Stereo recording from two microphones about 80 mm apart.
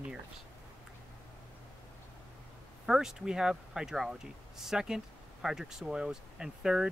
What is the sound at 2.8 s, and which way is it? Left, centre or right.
Speech, centre.